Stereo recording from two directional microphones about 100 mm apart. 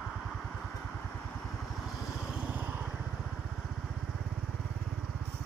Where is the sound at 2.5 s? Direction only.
20° right (ahead or behind).